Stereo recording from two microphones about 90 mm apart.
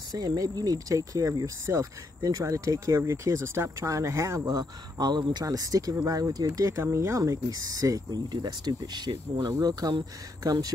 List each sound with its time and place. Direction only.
0.1 s speech: 45° right (ahead or behind)